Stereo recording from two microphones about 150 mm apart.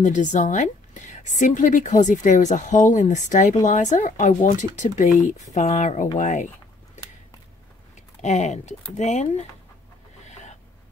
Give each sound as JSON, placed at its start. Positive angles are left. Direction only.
{"t": 0.0, "sound": "a woman's voice", "side_deg": 55}
{"t": 7.9, "sound": "speech", "side_deg": 50}